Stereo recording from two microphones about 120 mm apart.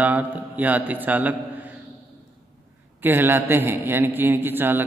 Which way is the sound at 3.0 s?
15° right (ahead or behind).